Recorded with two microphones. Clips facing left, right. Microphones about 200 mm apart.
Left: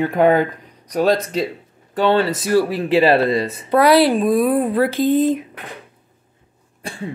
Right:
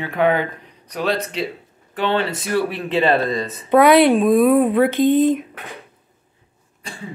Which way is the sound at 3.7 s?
Centre (ahead or behind).